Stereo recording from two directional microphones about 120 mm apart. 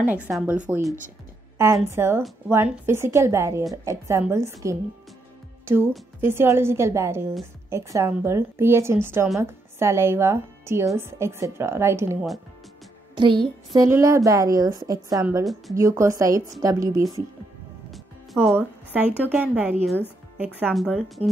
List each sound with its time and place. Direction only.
0.0 s a woman's voice: 15° right (ahead or behind)
6.2 s a woman's voice: 20° right (ahead or behind)
13.1 s a woman's voice: 40° right (ahead or behind)
13.8 s a woman's voice: 25° right (ahead or behind)
17.9 s music: centre (ahead or behind)
18.9 s a woman's voice: 15° right (ahead or behind)
20.7 s a woman's voice: centre (ahead or behind)